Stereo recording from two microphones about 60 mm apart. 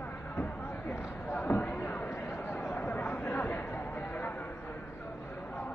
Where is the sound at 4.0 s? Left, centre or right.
Left.